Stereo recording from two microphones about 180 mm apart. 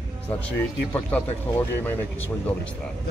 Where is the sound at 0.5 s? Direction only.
10° left (ahead or behind).